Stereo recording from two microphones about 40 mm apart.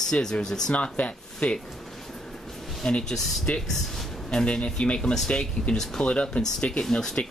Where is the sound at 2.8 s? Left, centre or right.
Centre.